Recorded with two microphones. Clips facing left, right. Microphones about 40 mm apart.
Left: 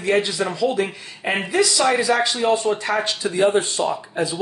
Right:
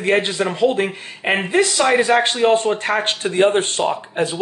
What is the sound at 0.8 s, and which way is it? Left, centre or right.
Speech, right.